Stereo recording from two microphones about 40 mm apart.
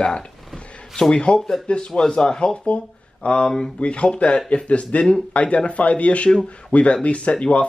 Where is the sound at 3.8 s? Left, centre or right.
Left.